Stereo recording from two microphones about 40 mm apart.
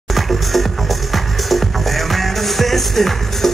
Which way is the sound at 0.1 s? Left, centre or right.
Centre.